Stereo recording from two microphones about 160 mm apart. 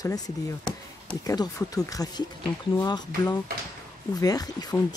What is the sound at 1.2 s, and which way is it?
Speech, 25° left (ahead or behind).